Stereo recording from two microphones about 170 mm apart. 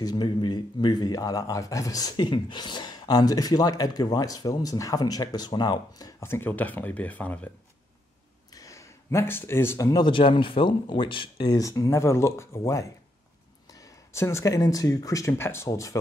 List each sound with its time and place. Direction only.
0.0 s speech: 25° left (ahead or behind); by 7.5 s 10° left (ahead or behind)
8.5 s speech: 20° left (ahead or behind)